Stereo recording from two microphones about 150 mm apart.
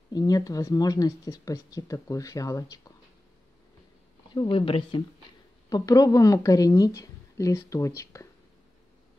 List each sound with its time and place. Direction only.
0.1 s speech: 25° left (ahead or behind)
4.3 s speech: 35° left (ahead or behind)
5.7 s speech: 25° left (ahead or behind)